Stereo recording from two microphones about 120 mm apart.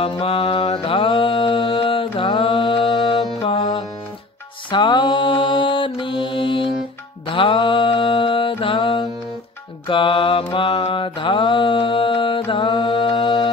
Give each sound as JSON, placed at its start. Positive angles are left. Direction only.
{"t": 0.0, "sound": "mantra", "side_deg": 50}
{"t": 4.6, "sound": "mantra", "side_deg": 40}